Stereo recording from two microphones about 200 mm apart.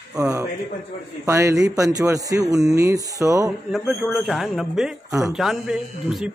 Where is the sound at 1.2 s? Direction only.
15° right (ahead or behind).